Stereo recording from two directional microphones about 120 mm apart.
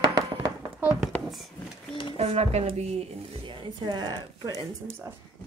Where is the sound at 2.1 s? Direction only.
60° right (ahead or behind).